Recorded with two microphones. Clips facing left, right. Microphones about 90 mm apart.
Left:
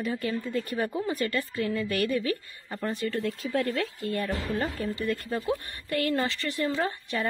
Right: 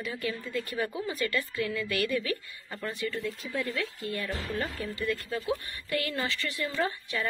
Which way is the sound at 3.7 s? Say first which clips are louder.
Left 4 dB; 50° left (ahead or behind).